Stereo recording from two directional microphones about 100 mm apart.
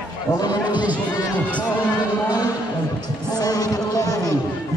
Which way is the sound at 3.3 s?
40° left (ahead or behind).